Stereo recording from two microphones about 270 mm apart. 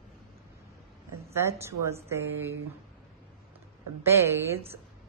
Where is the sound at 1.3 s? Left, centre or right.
Centre.